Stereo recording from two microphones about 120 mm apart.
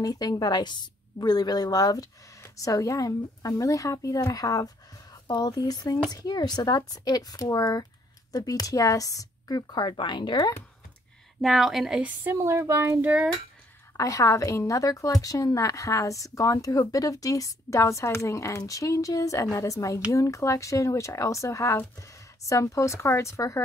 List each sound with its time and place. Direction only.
0.0 s a woman's voice: 30° left (ahead or behind)
11.4 s a woman's voice: centre (ahead or behind)
12.2 s speech: 20° right (ahead or behind)
13.9 s a woman's voice: 25° left (ahead or behind)